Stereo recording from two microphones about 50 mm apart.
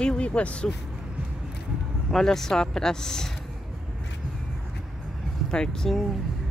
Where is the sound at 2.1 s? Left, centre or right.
Centre.